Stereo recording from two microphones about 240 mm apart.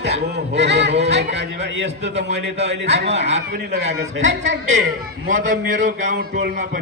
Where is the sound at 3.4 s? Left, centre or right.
Right.